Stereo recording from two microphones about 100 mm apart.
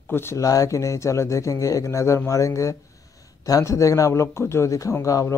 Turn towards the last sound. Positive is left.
turn(degrees=30)  # may be behind; listen again after turning